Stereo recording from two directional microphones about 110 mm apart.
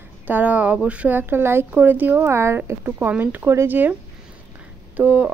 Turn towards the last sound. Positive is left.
turn(degrees=-15)  # may be behind; listen again after turning